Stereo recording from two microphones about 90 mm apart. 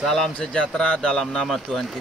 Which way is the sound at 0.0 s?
5° left (ahead or behind).